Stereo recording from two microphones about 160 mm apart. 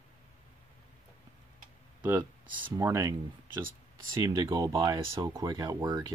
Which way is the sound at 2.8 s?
15° right (ahead or behind).